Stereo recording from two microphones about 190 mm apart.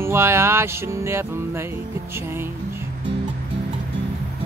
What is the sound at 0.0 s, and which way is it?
Music, 15° right (ahead or behind).